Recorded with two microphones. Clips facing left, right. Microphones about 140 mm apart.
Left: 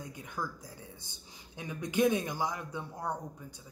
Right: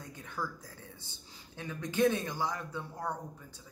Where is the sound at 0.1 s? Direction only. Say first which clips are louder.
Right 3 dB; 15° left (ahead or behind).